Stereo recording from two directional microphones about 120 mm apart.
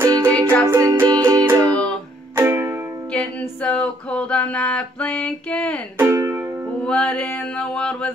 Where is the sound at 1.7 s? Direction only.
10° left (ahead or behind).